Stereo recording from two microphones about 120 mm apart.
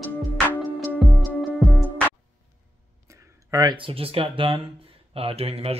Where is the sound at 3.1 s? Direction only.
30° right (ahead or behind).